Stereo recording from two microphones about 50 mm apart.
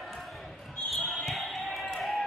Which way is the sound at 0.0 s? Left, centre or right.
Centre.